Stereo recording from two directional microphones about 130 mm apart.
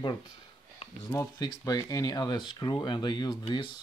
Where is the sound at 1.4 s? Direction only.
30° left (ahead or behind).